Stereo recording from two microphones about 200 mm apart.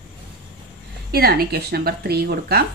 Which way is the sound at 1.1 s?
50° right (ahead or behind).